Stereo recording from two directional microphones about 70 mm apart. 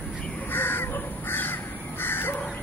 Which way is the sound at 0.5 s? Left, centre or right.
Left.